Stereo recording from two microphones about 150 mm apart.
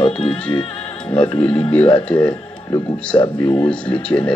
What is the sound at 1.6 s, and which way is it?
Speech, 10° left (ahead or behind).